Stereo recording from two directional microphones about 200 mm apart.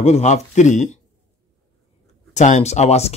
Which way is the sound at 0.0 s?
35° left (ahead or behind).